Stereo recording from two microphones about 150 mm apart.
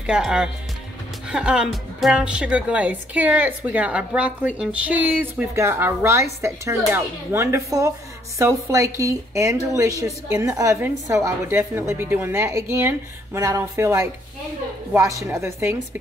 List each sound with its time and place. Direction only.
0.0 s a woman's voice: 5° right (ahead or behind)